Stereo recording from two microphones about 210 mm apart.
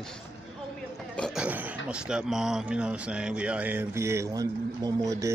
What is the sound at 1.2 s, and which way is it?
A man's voice, 5° right (ahead or behind).